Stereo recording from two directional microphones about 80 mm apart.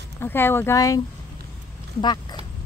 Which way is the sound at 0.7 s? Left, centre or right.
Left.